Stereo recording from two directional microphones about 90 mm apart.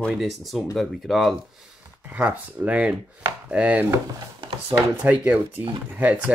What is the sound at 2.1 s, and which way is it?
Speech, 15° right (ahead or behind).